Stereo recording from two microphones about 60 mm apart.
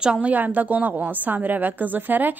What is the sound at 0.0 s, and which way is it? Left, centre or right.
A woman's voice, right.